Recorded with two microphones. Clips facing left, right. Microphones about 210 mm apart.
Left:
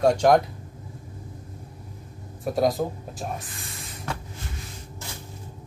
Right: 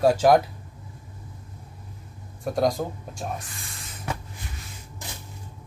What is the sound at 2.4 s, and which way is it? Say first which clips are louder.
Speech: left 1 dB; centre (ahead or behind).